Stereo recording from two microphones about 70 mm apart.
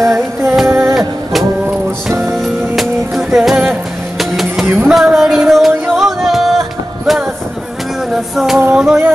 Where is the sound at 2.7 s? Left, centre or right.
Centre.